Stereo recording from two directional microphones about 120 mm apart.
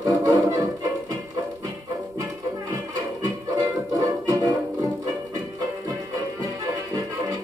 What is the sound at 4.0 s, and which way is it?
Music, 30° right (ahead or behind).